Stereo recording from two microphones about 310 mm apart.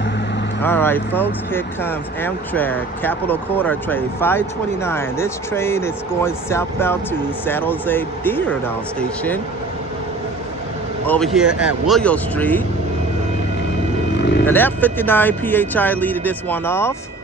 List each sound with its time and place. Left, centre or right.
0.6 s speech: centre
11.3 s speech: centre
14.1 s vehicle: left
14.4 s speech: centre